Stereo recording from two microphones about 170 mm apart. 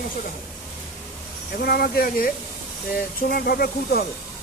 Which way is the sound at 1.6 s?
65° left (ahead or behind).